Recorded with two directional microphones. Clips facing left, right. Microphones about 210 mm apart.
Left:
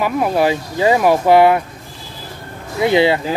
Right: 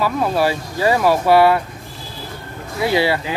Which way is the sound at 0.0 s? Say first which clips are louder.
Left 2 dB; 15° left (ahead or behind).